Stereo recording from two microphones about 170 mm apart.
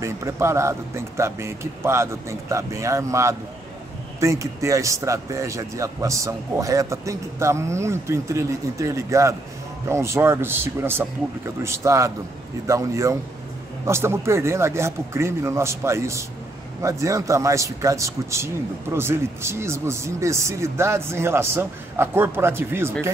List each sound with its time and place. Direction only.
0.0 s speech: 15° right (ahead or behind)